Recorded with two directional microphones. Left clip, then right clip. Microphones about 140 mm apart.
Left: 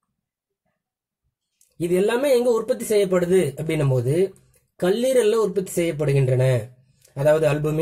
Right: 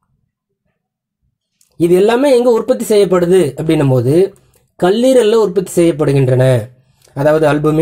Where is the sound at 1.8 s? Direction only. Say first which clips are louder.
Right 10 dB; 30° right (ahead or behind).